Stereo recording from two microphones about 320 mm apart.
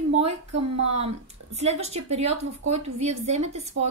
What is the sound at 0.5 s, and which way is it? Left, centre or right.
Speech, right.